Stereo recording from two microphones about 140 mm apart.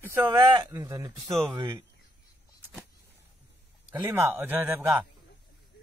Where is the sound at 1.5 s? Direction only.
35° right (ahead or behind).